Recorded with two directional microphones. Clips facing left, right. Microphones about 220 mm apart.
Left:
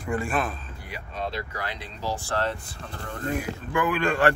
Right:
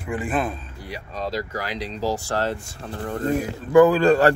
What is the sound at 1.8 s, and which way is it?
Speech, 90° right.